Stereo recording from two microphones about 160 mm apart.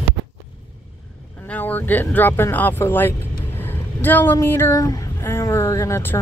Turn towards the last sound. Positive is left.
turn(degrees=20)  # may be behind; listen again after turning